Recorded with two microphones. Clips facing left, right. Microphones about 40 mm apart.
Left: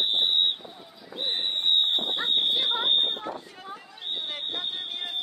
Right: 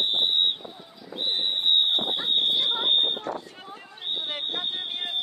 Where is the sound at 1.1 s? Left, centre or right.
Centre.